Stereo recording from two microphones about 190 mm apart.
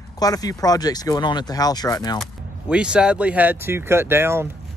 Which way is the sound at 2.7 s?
5° right (ahead or behind).